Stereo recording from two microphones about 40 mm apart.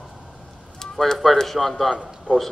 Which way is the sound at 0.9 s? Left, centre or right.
Centre.